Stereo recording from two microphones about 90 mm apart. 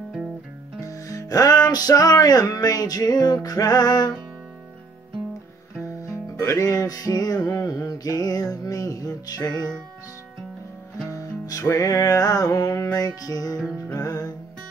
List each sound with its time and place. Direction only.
0.8 s music: 35° left (ahead or behind)
5.9 s music: 35° left (ahead or behind)
11.1 s music: 40° left (ahead or behind)